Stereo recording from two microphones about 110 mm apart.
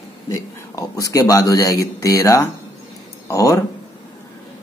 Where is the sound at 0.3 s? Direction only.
30° left (ahead or behind).